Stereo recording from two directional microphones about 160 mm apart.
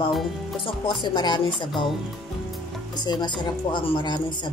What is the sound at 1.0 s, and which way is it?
Speech, 25° left (ahead or behind).